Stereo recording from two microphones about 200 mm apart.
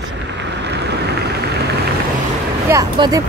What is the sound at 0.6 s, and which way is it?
Boat, 55° right (ahead or behind).